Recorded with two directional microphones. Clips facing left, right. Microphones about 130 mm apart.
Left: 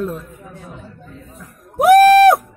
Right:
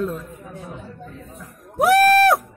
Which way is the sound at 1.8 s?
15° left (ahead or behind).